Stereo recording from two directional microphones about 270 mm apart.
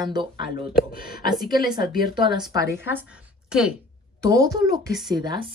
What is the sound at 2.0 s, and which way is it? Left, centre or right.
A woman's voice, centre.